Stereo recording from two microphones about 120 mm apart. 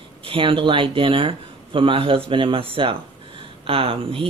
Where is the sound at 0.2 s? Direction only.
50° right (ahead or behind).